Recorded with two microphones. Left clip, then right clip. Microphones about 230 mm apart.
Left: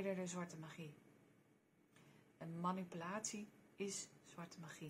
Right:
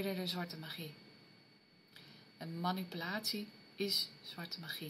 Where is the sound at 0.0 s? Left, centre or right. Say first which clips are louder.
Right 5 dB; centre.